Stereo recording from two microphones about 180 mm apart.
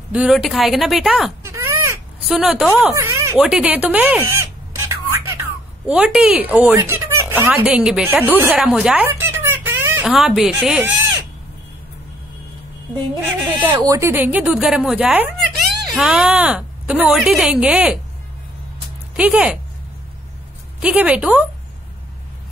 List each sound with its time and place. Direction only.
0.1 s speech: 5° right (ahead or behind)
1.4 s a sound: 15° right (ahead or behind)
2.2 s speech: 5° right (ahead or behind)
3.3 s a sound: 5° right (ahead or behind)
5.9 s speech: 5° right (ahead or behind)
13.2 s speech: 15° right (ahead or behind)
19.1 s speech: 5° right (ahead or behind)
20.8 s speech: 5° right (ahead or behind)